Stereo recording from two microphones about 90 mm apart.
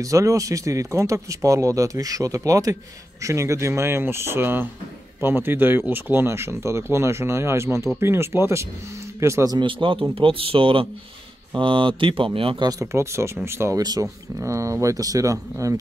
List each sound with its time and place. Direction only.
0.0 s speech: 40° right (ahead or behind)
9.5 s speech: 65° right (ahead or behind)
10.1 s speech: 90° right
11.5 s speech: 70° right (ahead or behind)
12.4 s speech: 90° right
12.6 s speech: 35° right (ahead or behind)